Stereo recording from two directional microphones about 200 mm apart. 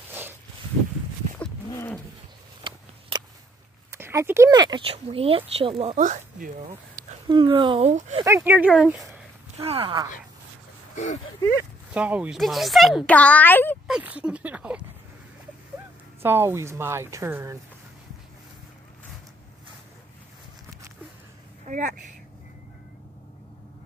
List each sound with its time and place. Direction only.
1.7 s roaring cats: 15° left (ahead or behind)
2.6 s a sound: 20° right (ahead or behind)
3.9 s speech: 15° right (ahead or behind); by 6.5 s 40° right (ahead or behind)
7.2 s speech: 25° right (ahead or behind)
8.3 s a woman's voice: 10° right (ahead or behind)
9.6 s speech: 25° right (ahead or behind)
11.9 s a child's voice: 5° right (ahead or behind); by 13.7 s 10° left (ahead or behind)
13.8 s a woman's voice: 5° right (ahead or behind)
16.2 s a woman's voice: 10° right (ahead or behind)
21.6 s a sound: 40° right (ahead or behind)